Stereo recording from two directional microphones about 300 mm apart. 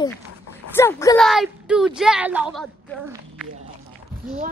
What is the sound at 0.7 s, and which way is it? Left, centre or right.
Speech, centre.